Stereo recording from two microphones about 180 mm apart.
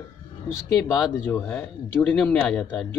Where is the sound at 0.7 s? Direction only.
20° left (ahead or behind).